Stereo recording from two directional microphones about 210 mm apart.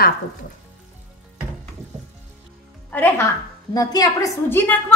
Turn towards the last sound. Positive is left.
turn(degrees=10)  # may be behind; listen again after turning